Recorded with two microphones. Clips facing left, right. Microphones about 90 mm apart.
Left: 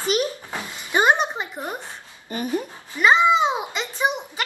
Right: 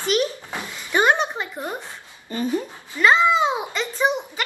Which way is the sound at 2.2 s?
20° left (ahead or behind).